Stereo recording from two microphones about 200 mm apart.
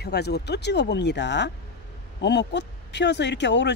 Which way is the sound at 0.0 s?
55° left (ahead or behind).